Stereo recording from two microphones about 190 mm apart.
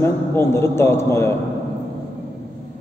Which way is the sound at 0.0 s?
15° left (ahead or behind).